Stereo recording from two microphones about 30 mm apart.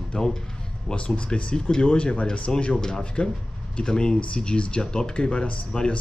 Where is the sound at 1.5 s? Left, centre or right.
Left.